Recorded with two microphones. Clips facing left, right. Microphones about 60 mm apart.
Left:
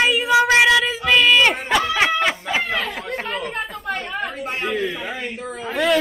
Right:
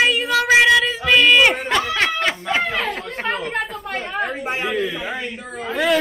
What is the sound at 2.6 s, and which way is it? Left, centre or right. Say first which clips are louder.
Speech: right 1 dB; right.